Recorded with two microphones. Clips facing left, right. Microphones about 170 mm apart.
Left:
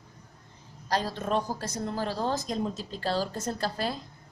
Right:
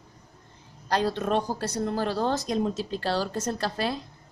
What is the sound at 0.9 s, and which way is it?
A woman's voice, 65° right (ahead or behind).